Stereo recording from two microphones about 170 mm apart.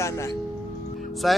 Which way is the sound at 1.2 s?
Centre (ahead or behind).